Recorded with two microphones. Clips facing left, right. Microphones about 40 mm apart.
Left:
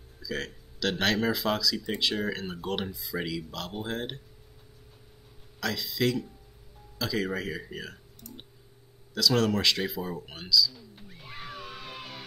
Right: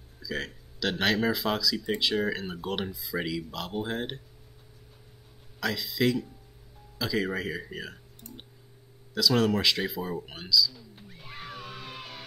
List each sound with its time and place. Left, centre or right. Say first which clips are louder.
0.2 s speech: even; centre
5.6 s speech: right 1 dB; centre
9.1 s a sound: right 1 dB; centre